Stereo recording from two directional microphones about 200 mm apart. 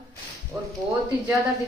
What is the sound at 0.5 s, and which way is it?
Speech, 20° right (ahead or behind).